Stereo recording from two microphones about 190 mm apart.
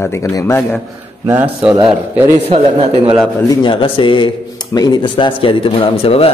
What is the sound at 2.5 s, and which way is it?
Speech, 30° right (ahead or behind).